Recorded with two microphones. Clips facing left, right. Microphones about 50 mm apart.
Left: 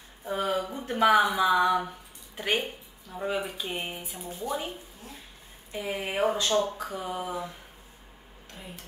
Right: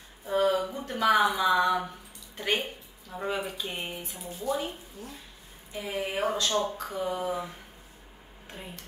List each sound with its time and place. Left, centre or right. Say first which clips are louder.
0.3 s a sound: right 3 dB; centre
1.1 s speech: right 1 dB; centre
4.3 s speech: right 2 dB; left
5.7 s speech: even; left
6.6 s speech: right 1 dB; centre